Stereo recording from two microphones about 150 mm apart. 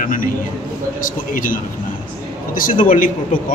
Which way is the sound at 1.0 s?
65° left (ahead or behind).